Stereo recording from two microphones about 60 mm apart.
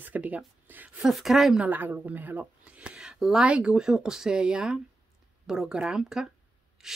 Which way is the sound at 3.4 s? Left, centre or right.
Centre.